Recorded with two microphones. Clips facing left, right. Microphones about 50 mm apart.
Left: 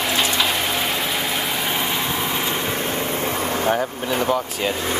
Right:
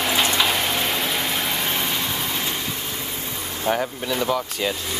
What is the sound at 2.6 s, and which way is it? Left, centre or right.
Vehicle, left.